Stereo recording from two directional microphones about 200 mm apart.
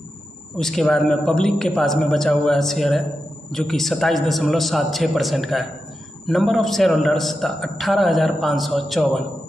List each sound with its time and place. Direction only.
0.6 s a man's voice: centre (ahead or behind)